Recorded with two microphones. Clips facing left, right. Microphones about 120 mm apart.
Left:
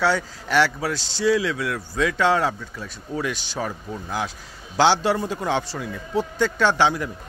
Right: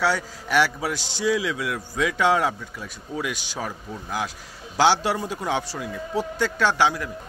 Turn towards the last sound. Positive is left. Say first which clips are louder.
# left 2 dB
turn(degrees=-5)  # may be behind; listen again after turning